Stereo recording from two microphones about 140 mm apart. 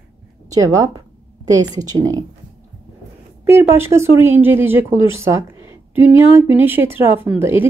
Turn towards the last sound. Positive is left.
turn(degrees=-15)  # may be behind; listen again after turning